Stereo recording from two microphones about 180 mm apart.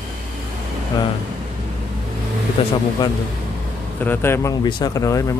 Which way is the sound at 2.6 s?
30° left (ahead or behind).